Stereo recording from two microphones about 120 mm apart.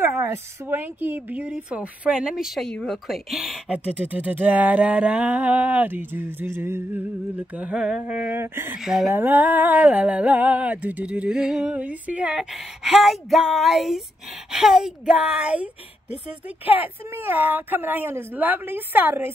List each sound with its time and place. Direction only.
0.0 s speech: 20° right (ahead or behind)
8.7 s speech: 5° right (ahead or behind)
9.1 s speech: 15° right (ahead or behind)